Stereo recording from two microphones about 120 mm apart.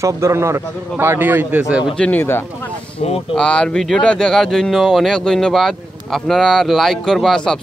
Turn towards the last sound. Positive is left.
turn(degrees=5)  # may be behind; listen again after turning